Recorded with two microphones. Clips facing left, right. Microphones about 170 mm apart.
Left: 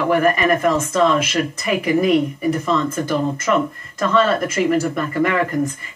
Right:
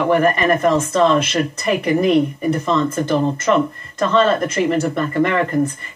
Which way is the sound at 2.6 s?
25° right (ahead or behind).